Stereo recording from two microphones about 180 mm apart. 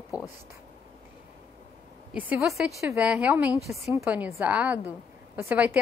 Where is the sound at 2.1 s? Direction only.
5° right (ahead or behind).